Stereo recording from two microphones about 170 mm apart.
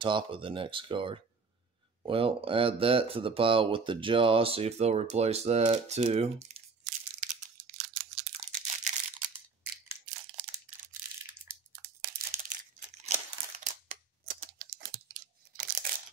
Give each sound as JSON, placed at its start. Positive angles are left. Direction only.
{"t": 0.0, "sound": "speech", "side_deg": -30}
{"t": 12.3, "sound": "a sound", "side_deg": -50}
{"t": 13.7, "sound": "scissors", "side_deg": -50}
{"t": 15.5, "sound": "crushing", "side_deg": -55}